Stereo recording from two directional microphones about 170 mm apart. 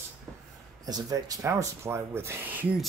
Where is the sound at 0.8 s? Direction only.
20° right (ahead or behind).